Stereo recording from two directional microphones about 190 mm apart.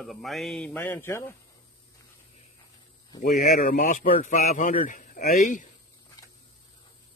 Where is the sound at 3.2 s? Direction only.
40° left (ahead or behind).